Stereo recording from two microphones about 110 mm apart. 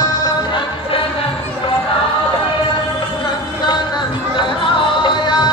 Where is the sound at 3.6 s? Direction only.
40° left (ahead or behind).